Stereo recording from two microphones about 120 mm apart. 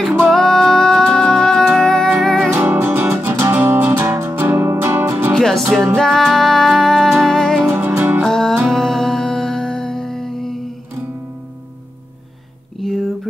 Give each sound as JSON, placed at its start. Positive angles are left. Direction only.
{"t": 0.3, "sound": "music", "side_deg": 5}
{"t": 2.5, "sound": "music", "side_deg": -20}
{"t": 5.4, "sound": "music", "side_deg": 0}
{"t": 7.6, "sound": "music", "side_deg": -20}
{"t": 8.2, "sound": "music", "side_deg": 5}
{"t": 12.8, "sound": "a sound", "side_deg": 0}